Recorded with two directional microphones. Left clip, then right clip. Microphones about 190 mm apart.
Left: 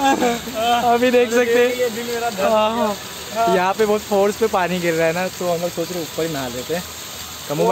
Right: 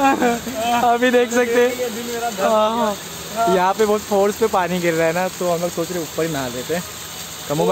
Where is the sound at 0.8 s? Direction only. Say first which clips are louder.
Right 2 dB; 30° right (ahead or behind).